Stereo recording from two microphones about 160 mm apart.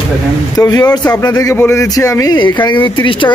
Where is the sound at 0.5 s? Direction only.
20° left (ahead or behind).